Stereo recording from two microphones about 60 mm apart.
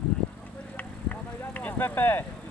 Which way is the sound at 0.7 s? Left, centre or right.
Left.